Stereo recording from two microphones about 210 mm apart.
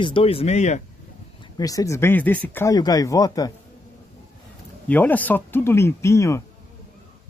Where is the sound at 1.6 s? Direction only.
15° left (ahead or behind).